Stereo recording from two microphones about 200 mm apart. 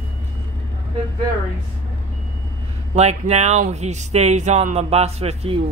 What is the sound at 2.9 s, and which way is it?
Speech, 35° right (ahead or behind).